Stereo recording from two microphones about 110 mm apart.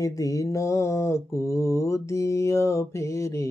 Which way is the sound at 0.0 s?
30° left (ahead or behind).